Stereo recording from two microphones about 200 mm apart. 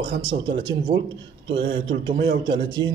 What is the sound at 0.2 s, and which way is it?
Speech, 25° right (ahead or behind).